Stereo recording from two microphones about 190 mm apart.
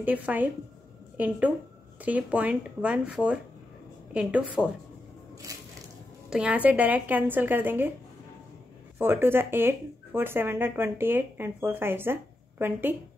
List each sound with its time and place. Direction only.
0.0 s a woman's voice: 10° right (ahead or behind)
5.5 s crushing: 20° right (ahead or behind)
6.3 s speech: 5° right (ahead or behind)
8.9 s speech: 10° right (ahead or behind)